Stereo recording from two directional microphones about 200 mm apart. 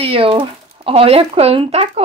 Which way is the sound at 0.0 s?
25° right (ahead or behind).